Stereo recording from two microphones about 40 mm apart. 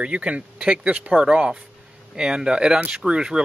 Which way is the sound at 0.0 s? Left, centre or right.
Right.